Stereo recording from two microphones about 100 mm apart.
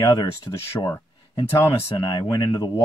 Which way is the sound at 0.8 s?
30° left (ahead or behind).